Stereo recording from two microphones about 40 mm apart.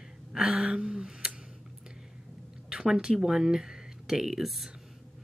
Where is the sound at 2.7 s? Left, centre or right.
Centre.